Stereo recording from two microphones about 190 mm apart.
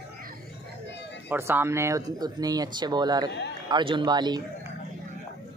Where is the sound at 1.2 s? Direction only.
10° right (ahead or behind).